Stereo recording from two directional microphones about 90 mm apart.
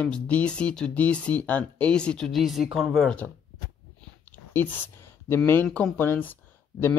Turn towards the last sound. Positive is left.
turn(degrees=25)  # may be behind; listen again after turning